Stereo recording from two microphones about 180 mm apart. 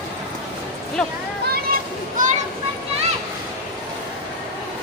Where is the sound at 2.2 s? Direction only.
45° right (ahead or behind).